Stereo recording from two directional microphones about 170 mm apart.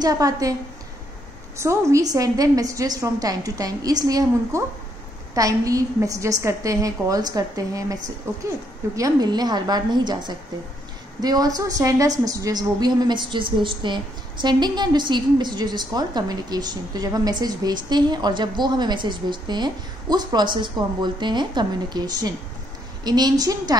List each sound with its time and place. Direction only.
0.0 s a woman's voice: 20° right (ahead or behind)
1.6 s a woman's voice: 15° right (ahead or behind)